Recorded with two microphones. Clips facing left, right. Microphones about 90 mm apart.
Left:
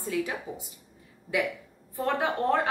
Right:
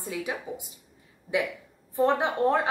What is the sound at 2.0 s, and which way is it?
Speech, 20° right (ahead or behind).